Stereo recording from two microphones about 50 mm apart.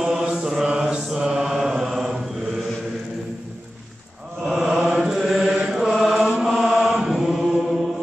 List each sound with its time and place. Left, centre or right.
0.0 s mantra: centre
4.6 s mantra: centre